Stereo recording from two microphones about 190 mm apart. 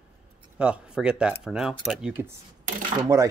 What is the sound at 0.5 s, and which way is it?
Speech, 5° right (ahead or behind).